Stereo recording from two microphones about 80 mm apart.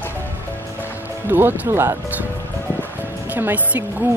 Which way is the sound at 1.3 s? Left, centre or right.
Right.